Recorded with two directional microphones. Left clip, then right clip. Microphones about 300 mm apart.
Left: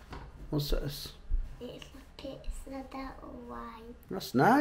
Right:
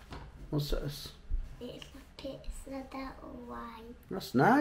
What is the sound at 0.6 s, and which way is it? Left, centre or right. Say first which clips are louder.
Speech: left 2 dB; centre.